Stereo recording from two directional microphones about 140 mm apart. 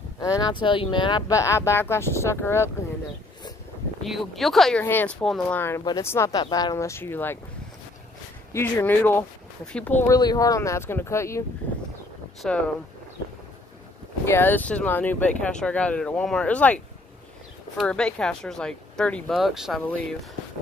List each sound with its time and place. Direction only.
0.2 s speech: 25° left (ahead or behind)
1.3 s speech: 20° left (ahead or behind)
4.0 s speech: centre (ahead or behind)
5.9 s speech: 20° left (ahead or behind)
8.5 s speech: 15° left (ahead or behind)
10.1 s speech: 25° left (ahead or behind)
12.4 s speech: 5° left (ahead or behind)
14.2 s speech: 15° left (ahead or behind); by 19.8 s centre (ahead or behind)